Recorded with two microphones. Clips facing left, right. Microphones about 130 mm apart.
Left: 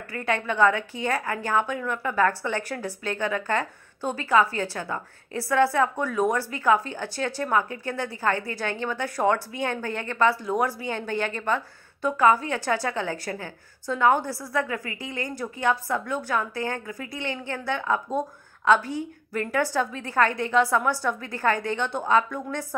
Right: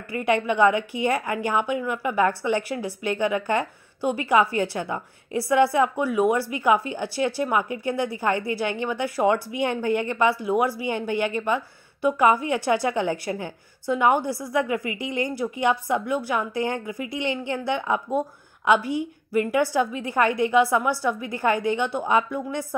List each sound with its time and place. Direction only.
0.1 s a woman's voice: 15° right (ahead or behind)